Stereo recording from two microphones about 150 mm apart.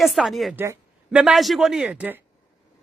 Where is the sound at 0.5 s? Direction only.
15° right (ahead or behind).